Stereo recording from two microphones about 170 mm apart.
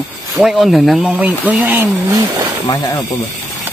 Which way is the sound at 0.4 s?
Centre (ahead or behind).